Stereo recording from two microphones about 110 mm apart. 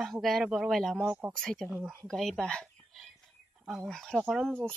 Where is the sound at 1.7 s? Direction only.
20° right (ahead or behind).